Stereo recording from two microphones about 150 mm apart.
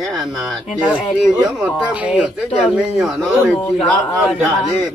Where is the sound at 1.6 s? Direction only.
5° right (ahead or behind).